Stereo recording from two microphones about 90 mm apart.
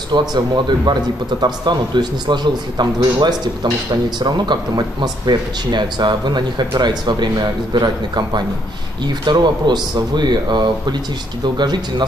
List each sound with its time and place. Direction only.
0.1 s a man's voice: 50° right (ahead or behind)